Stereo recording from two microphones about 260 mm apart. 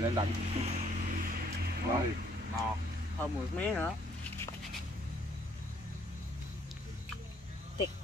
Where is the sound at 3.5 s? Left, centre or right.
Centre.